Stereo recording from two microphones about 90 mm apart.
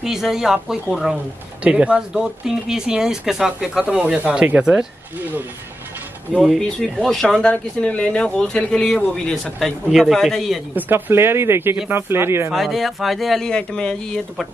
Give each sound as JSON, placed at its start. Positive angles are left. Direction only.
{"t": 0.0, "sound": "speech", "side_deg": -5}
{"t": 6.3, "sound": "speech", "side_deg": 0}
{"t": 7.3, "sound": "speech", "side_deg": 15}
{"t": 10.7, "sound": "speech", "side_deg": -20}
{"t": 12.5, "sound": "speech", "side_deg": 0}